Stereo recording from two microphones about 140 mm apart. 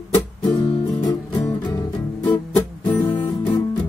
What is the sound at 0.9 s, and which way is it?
Music, 35° left (ahead or behind).